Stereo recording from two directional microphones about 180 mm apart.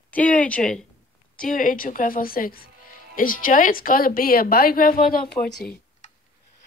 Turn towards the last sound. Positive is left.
turn(degrees=5)  # may be behind; listen again after turning